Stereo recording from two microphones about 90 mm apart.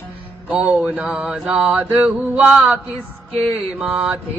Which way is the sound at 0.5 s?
15° right (ahead or behind).